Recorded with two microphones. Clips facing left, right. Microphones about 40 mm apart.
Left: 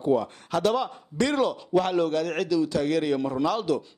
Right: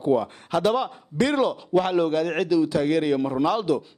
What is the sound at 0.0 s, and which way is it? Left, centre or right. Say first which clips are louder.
A man's voice: right 2 dB; centre.